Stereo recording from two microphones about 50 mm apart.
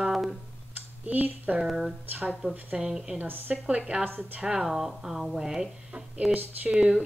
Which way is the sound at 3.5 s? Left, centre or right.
Right.